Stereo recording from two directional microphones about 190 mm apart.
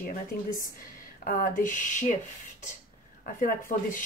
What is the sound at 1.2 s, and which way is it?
Speech, 45° left (ahead or behind).